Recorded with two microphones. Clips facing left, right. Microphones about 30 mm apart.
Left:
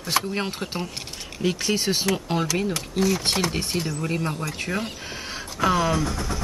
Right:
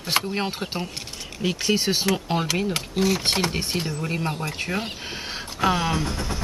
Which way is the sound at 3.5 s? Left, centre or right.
Centre.